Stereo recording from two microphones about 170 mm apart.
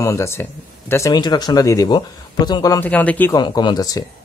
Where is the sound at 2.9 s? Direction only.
10° left (ahead or behind).